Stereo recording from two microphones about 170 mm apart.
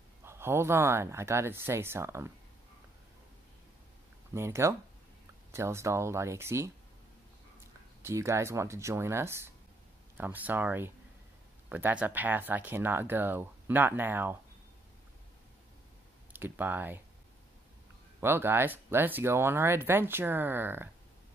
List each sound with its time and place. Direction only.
0.2 s speech: 15° right (ahead or behind)
4.3 s speech: 15° right (ahead or behind)
8.0 s speech: 15° right (ahead or behind)
16.3 s speech: 10° right (ahead or behind)
18.2 s speech: 15° right (ahead or behind)